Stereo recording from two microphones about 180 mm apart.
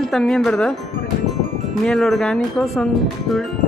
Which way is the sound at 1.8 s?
Centre (ahead or behind).